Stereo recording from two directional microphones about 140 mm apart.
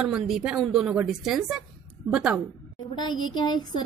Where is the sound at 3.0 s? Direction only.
30° left (ahead or behind).